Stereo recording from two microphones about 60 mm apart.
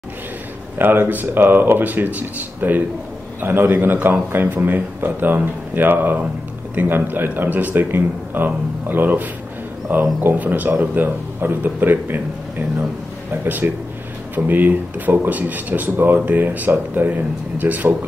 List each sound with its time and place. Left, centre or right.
0.7 s a man's voice: right